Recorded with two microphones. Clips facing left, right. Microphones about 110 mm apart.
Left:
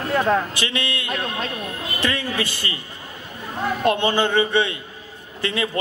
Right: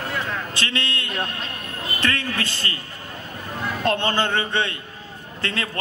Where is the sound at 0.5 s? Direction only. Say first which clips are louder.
Left 1 dB; 15° left (ahead or behind).